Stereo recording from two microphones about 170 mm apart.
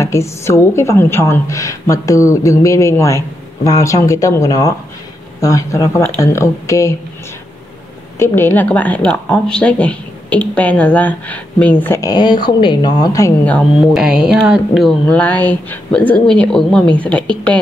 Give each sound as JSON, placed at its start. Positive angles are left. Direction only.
{"t": 0.0, "sound": "a woman's voice", "side_deg": 15}
{"t": 8.2, "sound": "a woman's voice", "side_deg": 10}
{"t": 13.5, "sound": "speech", "side_deg": 0}